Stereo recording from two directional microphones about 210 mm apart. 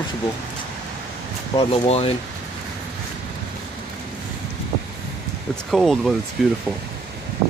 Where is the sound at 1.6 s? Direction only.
30° left (ahead or behind).